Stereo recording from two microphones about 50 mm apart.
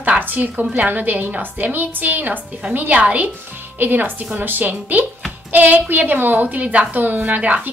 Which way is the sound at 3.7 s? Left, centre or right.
Right.